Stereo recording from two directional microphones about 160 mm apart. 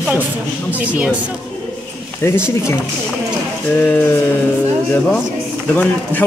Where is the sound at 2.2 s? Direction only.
15° left (ahead or behind).